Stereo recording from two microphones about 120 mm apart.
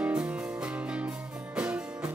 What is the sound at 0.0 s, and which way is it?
Music, 10° right (ahead or behind).